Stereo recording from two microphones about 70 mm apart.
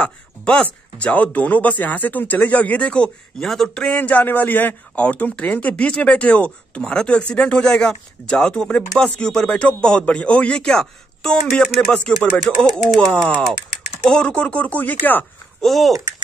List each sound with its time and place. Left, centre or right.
0.0 s a man's voice: centre
3.9 s a man's voice: left
12.7 s speech: centre
14.1 s speech: centre
15.6 s speech: centre